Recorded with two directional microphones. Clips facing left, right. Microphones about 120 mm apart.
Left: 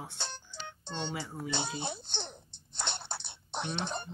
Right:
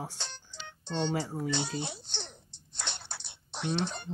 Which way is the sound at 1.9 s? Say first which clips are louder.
Left 3 dB; 50° left (ahead or behind).